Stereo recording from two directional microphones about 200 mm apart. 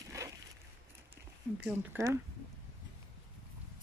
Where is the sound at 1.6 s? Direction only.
10° right (ahead or behind).